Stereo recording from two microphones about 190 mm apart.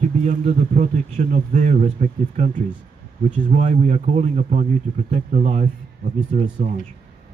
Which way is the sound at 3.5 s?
40° right (ahead or behind).